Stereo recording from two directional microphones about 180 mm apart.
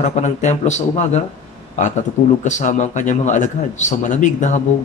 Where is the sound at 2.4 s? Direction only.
40° left (ahead or behind).